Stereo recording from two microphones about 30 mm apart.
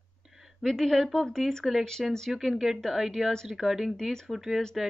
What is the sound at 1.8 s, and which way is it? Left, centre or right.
Speech, centre.